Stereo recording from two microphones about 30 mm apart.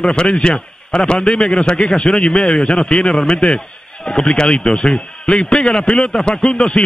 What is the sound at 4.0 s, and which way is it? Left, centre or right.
Speech, centre.